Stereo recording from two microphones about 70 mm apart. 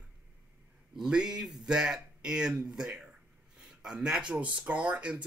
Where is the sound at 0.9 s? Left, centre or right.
Centre.